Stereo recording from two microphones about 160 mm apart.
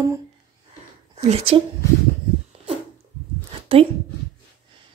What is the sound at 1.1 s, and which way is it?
Speech, 35° right (ahead or behind).